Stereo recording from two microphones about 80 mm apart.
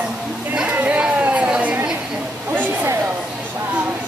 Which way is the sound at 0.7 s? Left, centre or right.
Centre.